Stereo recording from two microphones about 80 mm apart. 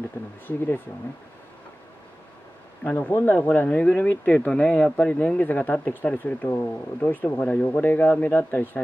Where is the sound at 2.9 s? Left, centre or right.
Left.